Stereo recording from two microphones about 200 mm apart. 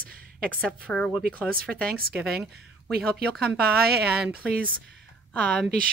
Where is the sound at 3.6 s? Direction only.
50° right (ahead or behind).